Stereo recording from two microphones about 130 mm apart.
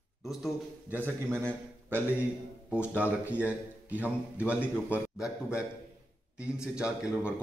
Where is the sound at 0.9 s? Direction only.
15° right (ahead or behind).